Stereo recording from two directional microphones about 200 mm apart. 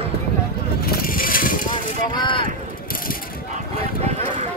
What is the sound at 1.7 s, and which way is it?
Vehicle, 25° left (ahead or behind).